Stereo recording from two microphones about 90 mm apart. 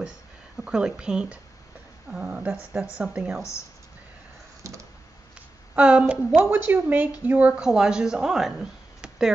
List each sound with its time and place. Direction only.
0.7 s speech: 10° right (ahead or behind)
4.6 s a sound: 35° right (ahead or behind)
5.8 s speech: 10° right (ahead or behind)
6.4 s speech: 25° right (ahead or behind); by 9.3 s 5° right (ahead or behind)